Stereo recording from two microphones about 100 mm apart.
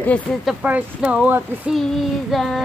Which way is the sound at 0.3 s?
5° left (ahead or behind).